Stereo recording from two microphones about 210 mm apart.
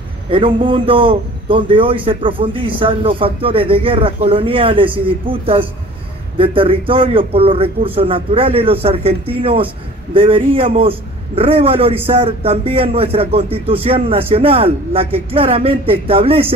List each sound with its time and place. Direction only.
0.6 s a man's voice: 25° right (ahead or behind)